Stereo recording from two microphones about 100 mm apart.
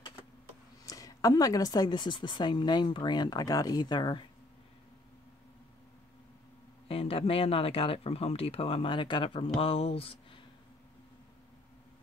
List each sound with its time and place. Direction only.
0.8 s speech: 35° left (ahead or behind)
6.9 s speech: 70° left (ahead or behind)